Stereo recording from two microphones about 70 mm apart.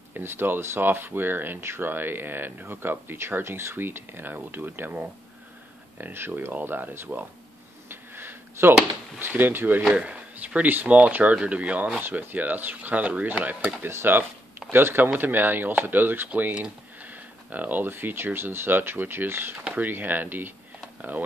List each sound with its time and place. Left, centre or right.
0.1 s speech: right
7.9 s a sound: right
9.2 s speech: right
13.8 s speech: right